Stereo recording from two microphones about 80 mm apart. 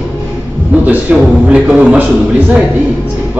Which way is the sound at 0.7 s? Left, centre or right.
Centre.